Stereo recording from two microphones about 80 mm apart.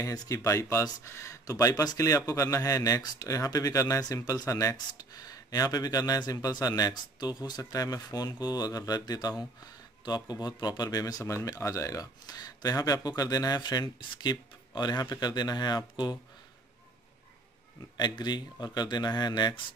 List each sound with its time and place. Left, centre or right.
0.0 s speech: left
17.9 s speech: left